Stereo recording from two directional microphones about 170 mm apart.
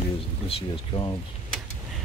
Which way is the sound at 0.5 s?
30° left (ahead or behind).